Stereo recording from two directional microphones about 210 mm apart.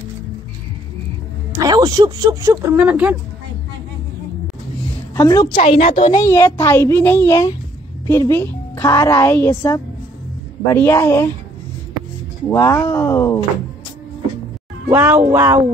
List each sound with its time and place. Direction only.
1.5 s speech: 15° right (ahead or behind)
5.1 s a woman's voice: 15° left (ahead or behind)
5.6 s a woman's voice: 30° left (ahead or behind); by 9.6 s 10° left (ahead or behind)
10.7 s a woman's voice: 10° left (ahead or behind)
12.4 s a woman's voice: 15° left (ahead or behind)
14.9 s speech: 10° right (ahead or behind)